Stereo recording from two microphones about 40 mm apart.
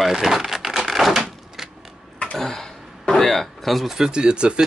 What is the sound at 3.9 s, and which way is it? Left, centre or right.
Speech, centre.